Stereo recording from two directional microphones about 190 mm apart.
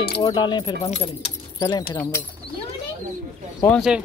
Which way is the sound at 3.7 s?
Centre (ahead or behind).